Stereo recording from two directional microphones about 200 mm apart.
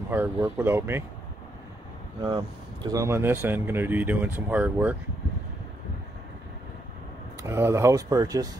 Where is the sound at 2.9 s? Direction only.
15° right (ahead or behind).